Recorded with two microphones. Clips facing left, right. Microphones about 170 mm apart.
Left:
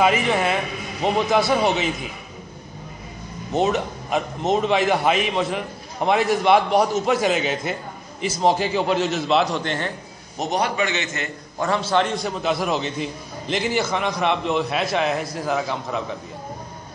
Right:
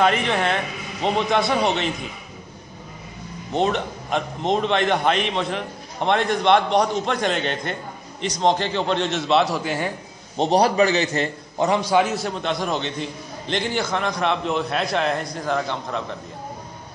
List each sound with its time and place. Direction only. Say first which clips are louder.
0.0 s a man's voice: left 1 dB; 5° left (ahead or behind)
3.5 s a man's voice: left 1 dB; 5° left (ahead or behind)
10.3 s a man's voice: right 5 dB; 30° right (ahead or behind)
11.6 s a man's voice: right 2 dB; 15° right (ahead or behind); by 16.2 s 5° left (ahead or behind)